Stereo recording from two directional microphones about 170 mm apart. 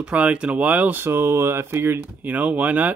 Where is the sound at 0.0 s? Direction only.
5° right (ahead or behind).